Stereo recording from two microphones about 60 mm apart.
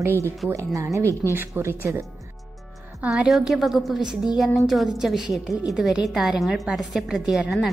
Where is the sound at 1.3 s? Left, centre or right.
Right.